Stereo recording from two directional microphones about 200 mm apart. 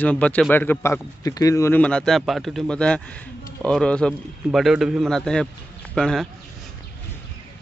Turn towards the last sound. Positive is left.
turn(degrees=0)  # may be behind; listen again after turning